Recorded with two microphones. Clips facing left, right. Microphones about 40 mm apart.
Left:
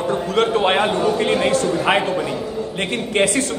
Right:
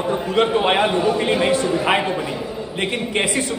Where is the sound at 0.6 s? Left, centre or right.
Centre.